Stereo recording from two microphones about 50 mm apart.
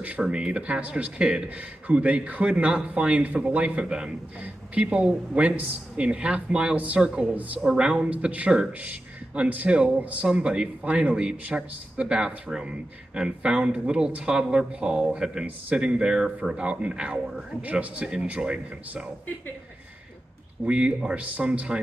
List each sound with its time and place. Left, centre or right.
0.2 s speech: centre
0.5 s speech: right
8.1 s a man's voice: right
20.6 s speech: centre